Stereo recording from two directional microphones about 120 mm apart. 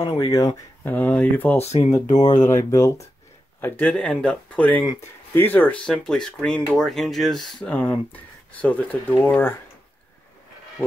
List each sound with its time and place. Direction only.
0.0 s speech: 30° left (ahead or behind)
0.8 s speech: 15° left (ahead or behind)
1.6 s speech: 60° left (ahead or behind)
2.3 s speech: 90° left
2.7 s speech: 25° left (ahead or behind)
3.6 s speech: 10° left (ahead or behind)
7.7 s speech: 15° left (ahead or behind)
10.8 s speech: 20° left (ahead or behind)